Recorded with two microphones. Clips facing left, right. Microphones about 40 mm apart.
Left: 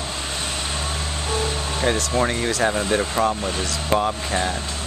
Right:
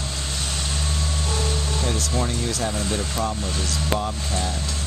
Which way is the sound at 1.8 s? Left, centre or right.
Left.